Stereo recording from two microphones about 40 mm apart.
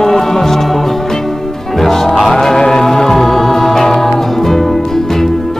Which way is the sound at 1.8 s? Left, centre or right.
Centre.